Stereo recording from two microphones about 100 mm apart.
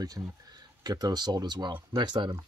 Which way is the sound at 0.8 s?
40° right (ahead or behind).